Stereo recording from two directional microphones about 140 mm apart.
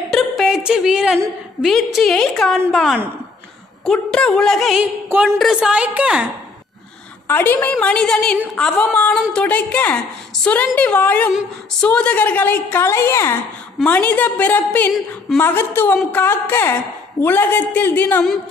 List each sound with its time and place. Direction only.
0.1 s a woman's voice: centre (ahead or behind)
7.2 s a woman's voice: 15° left (ahead or behind)